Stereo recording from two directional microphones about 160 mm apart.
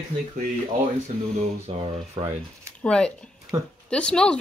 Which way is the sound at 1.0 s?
45° right (ahead or behind).